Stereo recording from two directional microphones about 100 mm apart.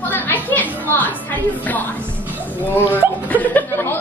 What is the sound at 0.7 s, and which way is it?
A woman's voice, 15° left (ahead or behind).